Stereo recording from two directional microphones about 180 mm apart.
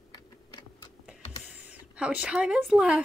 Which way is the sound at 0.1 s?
20° left (ahead or behind).